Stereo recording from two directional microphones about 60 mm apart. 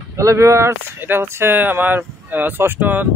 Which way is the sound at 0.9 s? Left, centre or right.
Right.